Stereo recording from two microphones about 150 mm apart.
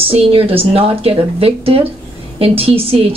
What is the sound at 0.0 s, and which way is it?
A woman's voice, 40° right (ahead or behind).